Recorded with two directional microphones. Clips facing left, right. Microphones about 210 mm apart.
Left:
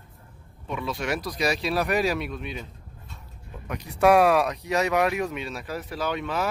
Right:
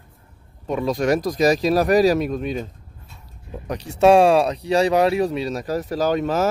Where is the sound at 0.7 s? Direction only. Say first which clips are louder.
Right 9 dB; 40° right (ahead or behind).